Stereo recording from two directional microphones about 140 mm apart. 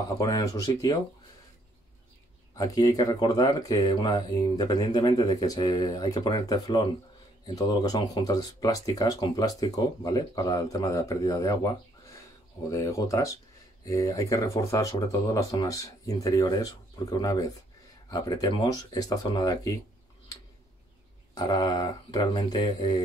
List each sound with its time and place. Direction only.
0.2 s speech: 25° left (ahead or behind)
2.5 s speech: 25° left (ahead or behind)
21.4 s speech: 30° left (ahead or behind)